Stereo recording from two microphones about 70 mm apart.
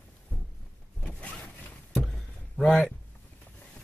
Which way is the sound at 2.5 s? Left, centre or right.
Centre.